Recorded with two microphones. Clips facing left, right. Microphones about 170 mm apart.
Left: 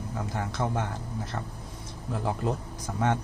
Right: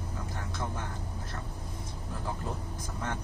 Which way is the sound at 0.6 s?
90° left.